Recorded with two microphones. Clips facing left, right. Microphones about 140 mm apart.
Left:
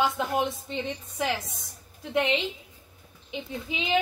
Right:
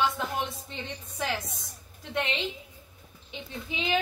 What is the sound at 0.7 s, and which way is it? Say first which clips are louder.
A woman's voice: left 7 dB; 20° left (ahead or behind).